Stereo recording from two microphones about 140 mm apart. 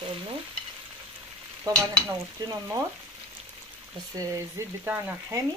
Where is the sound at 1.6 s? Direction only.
25° right (ahead or behind).